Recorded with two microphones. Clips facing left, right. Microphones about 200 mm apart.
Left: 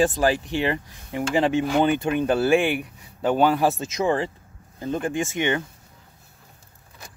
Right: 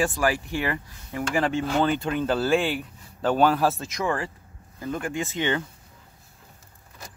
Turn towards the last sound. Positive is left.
turn(degrees=15)  # may be behind; listen again after turning